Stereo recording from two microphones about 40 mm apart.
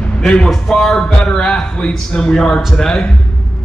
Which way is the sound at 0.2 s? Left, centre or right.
Left.